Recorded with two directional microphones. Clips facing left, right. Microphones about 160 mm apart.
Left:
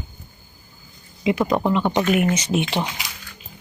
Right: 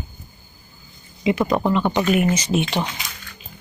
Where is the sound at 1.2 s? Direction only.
Centre (ahead or behind).